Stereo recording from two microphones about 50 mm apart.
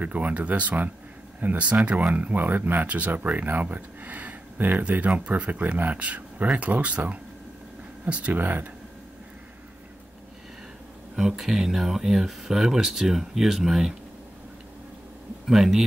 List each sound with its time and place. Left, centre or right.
0.0 s speech: right
11.1 s speech: centre
15.4 s a man's voice: centre